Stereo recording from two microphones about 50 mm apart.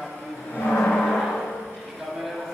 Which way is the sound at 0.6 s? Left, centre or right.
Left.